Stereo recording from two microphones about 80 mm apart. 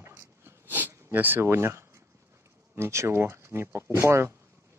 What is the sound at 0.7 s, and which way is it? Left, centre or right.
Speech, right.